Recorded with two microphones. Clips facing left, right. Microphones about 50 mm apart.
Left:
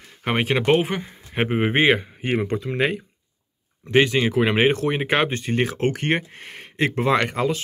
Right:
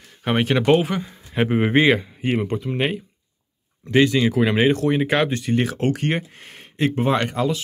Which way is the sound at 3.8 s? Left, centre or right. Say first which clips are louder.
Right 1 dB; left.